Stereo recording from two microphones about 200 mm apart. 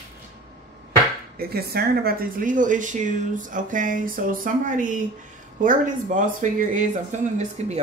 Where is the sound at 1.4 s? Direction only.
50° right (ahead or behind).